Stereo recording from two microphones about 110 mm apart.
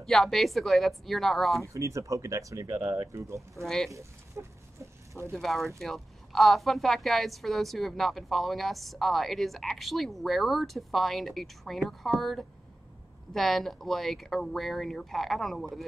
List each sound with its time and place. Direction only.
0.0 s a woman's voice: 5° left (ahead or behind)
1.7 s speech: 30° right (ahead or behind)
3.6 s a woman's voice: 5° left (ahead or behind)
3.9 s a sound: 25° right (ahead or behind)
5.3 s a woman's voice: centre (ahead or behind)